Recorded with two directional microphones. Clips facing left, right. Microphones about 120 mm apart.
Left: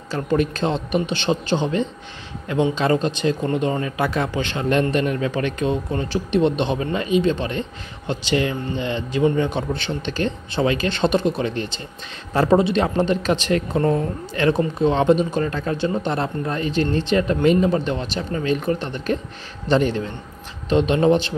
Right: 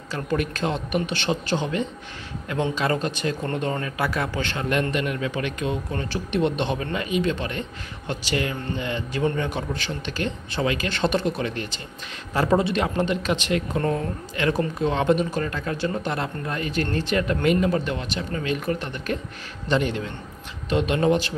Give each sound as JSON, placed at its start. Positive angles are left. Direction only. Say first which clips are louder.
{"t": 0.1, "sound": "speech", "louder": "left 5 dB", "side_deg": 25}
{"t": 4.6, "sound": "speech", "louder": "left 6 dB", "side_deg": 30}